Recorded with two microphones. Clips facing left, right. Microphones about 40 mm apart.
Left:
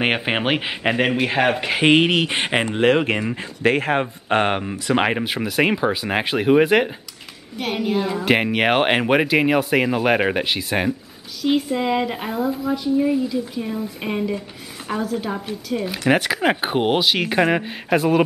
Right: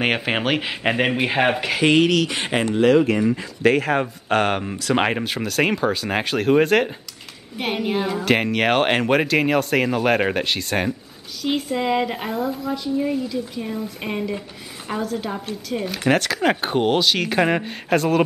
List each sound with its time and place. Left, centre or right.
0.0 s speech: centre
0.8 s speech: centre
1.8 s speech: left
4.0 s speech: centre
4.9 s speech: centre
7.5 s a woman's voice: centre
8.3 s speech: centre